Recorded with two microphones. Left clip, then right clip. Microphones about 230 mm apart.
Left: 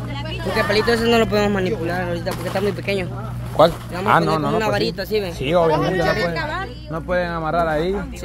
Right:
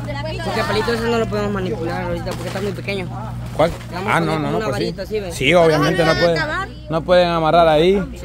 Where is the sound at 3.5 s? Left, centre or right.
Centre.